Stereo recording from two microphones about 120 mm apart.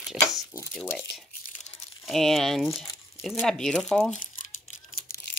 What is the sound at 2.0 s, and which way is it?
Speech, centre (ahead or behind).